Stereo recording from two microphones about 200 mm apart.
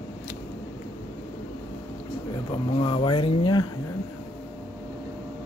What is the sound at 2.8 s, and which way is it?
Speech, 25° left (ahead or behind).